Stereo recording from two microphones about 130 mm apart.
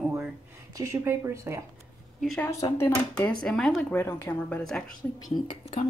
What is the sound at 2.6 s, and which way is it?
Speech, 20° left (ahead or behind).